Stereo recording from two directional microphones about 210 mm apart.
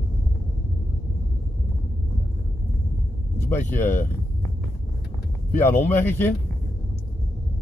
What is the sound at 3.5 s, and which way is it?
Speech, 10° left (ahead or behind).